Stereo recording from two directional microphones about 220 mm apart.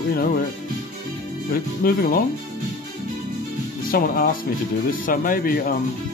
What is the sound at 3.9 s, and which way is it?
Speech, 45° left (ahead or behind).